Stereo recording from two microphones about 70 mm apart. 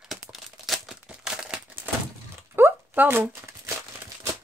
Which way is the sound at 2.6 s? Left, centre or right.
Right.